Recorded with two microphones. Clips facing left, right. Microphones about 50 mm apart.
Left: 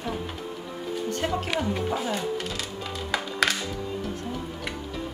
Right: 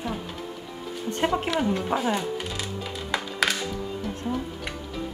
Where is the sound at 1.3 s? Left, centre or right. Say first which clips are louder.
Right 2 dB; right.